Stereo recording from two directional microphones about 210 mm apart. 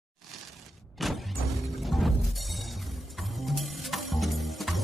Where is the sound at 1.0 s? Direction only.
Centre (ahead or behind).